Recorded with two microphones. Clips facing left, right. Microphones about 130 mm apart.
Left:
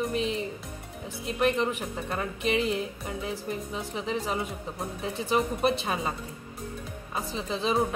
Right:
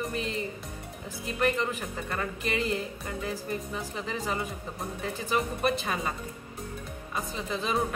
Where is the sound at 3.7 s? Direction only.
20° left (ahead or behind).